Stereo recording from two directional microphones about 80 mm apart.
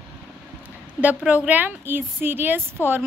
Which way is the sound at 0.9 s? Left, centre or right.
Centre.